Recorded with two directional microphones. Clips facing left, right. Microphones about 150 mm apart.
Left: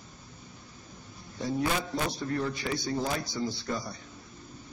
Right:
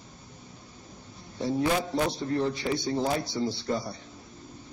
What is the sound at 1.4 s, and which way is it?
Speech, 25° right (ahead or behind).